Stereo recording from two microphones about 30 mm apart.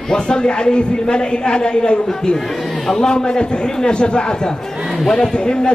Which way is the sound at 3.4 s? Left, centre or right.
Left.